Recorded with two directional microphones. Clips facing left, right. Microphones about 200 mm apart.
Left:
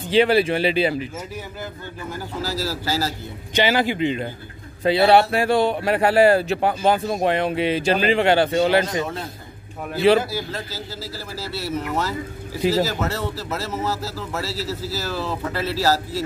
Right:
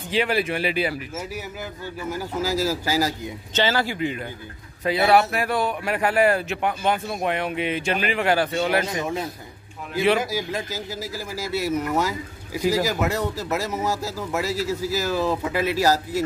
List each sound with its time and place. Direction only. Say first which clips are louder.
0.1 s speech: left 6 dB; 30° left (ahead or behind)
2.6 s a man's voice: even; 15° right (ahead or behind)
3.5 s speech: left 3 dB; 15° left (ahead or behind)
9.0 s a man's voice: right 2 dB; 10° right (ahead or behind)
10.3 s a man's voice: right 2 dB; 15° right (ahead or behind)